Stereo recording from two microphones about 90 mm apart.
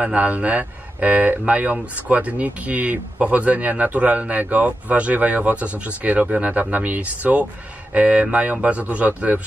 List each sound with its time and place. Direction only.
0.0 s speech: 15° right (ahead or behind)